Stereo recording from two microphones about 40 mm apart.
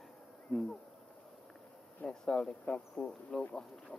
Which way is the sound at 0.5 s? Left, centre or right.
Centre.